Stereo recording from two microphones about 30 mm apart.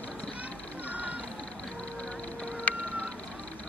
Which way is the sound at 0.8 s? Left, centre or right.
Right.